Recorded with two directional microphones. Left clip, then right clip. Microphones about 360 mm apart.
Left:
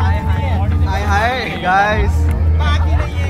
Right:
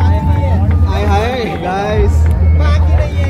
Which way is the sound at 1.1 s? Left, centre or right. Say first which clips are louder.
Even; centre.